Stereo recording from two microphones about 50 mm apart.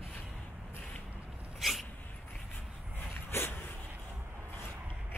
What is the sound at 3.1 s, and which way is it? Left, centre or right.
Dog, left.